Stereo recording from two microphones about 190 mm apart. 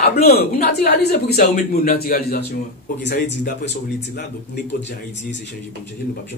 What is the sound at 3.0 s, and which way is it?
Speech, 65° left (ahead or behind).